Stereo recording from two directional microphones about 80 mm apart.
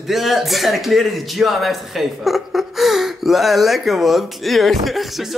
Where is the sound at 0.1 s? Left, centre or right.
Centre.